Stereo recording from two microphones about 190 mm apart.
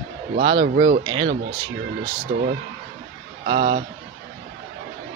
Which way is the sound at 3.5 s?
25° right (ahead or behind).